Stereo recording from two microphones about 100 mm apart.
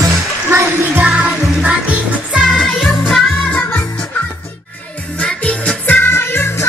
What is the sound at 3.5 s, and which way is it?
Music, 15° left (ahead or behind).